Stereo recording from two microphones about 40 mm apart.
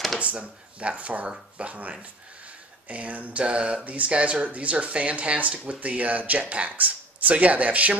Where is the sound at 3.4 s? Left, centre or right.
Right.